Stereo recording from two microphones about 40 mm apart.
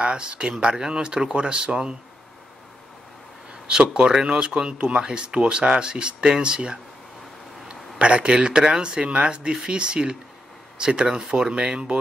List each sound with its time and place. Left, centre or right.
0.0 s speech: right
3.6 s speech: right
8.0 s speech: right